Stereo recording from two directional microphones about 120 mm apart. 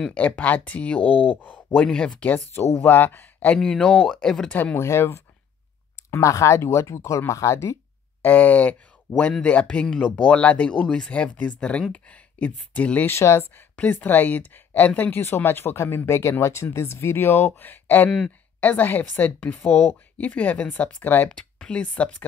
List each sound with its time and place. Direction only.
0.1 s speech: 10° left (ahead or behind)
3.5 s speech: 5° left (ahead or behind)
4.7 s speech: 20° left (ahead or behind)